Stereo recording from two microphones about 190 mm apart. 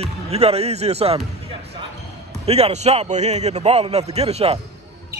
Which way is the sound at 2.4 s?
35° right (ahead or behind).